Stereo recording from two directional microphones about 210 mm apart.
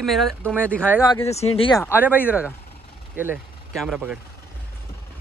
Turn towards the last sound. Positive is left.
turn(degrees=-5)  # may be behind; listen again after turning